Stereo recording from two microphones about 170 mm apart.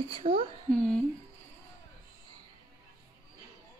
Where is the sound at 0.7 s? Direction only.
5° left (ahead or behind).